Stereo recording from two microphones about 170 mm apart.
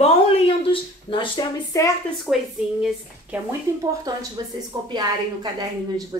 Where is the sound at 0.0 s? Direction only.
35° left (ahead or behind).